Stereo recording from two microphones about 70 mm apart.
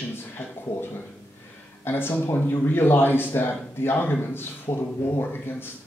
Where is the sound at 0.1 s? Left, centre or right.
Left.